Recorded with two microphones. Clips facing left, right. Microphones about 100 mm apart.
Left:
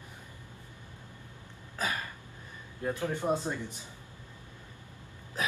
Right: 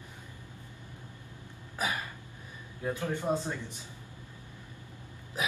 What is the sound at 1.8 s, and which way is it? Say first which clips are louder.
Hiccup: right 1 dB; 15° right (ahead or behind).